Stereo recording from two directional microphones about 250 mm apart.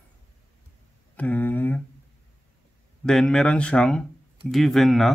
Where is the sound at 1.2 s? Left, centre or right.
Centre.